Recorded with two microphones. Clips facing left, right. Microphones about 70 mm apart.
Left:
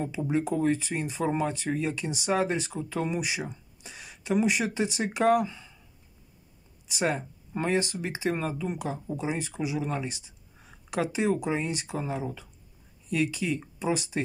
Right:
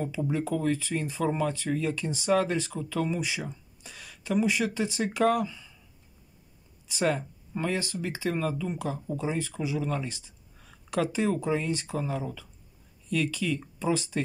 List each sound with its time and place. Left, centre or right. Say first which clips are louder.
0.3 s speech: left 3 dB; left
5.3 s speech: left 4 dB; left
7.0 s speech: right 1 dB; left